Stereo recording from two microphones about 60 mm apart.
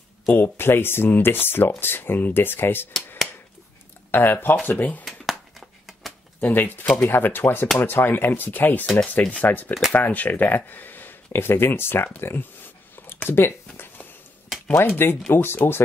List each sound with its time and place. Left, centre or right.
0.3 s speech: left
4.1 s speech: left
5.0 s a sound: centre
6.4 s speech: left
12.2 s a sound: left
13.3 s speech: left
15.0 s speech: left